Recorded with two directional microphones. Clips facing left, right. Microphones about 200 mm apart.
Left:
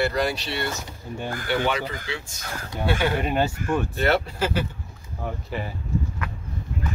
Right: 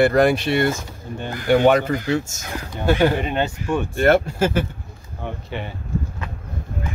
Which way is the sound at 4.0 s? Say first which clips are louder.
Right 9 dB; 50° right (ahead or behind).